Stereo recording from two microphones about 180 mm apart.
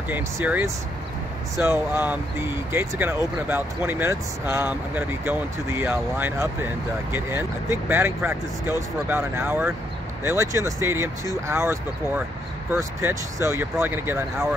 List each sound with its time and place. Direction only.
0.1 s speech: 10° right (ahead or behind)